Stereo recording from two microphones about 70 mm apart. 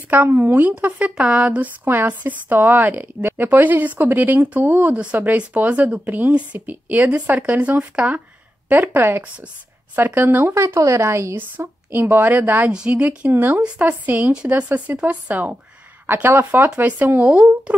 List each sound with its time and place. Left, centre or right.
0.1 s speech: right
11.3 s speech: right
12.7 s speech: centre